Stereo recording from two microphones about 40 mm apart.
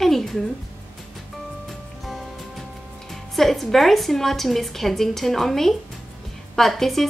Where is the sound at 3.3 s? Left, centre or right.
Centre.